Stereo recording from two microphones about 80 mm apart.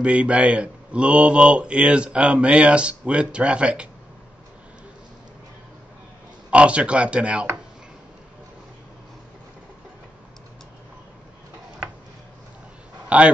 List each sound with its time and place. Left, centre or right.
0.0 s speech: centre
6.5 s speech: centre
13.1 s speech: centre